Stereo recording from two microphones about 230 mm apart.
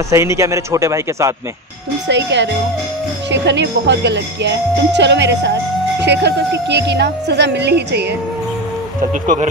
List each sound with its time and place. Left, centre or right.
0.1 s a man's voice: centre
2.0 s speech: right